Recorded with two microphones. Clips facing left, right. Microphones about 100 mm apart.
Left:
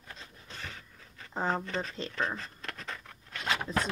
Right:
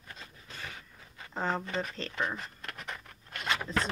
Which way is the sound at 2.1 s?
15° right (ahead or behind).